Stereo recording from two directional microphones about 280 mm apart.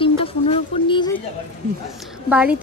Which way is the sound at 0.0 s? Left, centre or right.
Centre.